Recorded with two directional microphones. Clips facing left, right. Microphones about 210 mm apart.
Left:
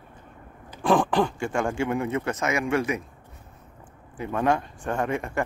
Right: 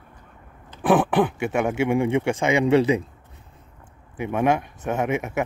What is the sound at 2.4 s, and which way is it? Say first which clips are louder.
Speech: right 8 dB; 30° right (ahead or behind).